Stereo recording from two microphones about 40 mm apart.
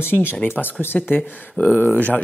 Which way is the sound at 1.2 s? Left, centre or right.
Left.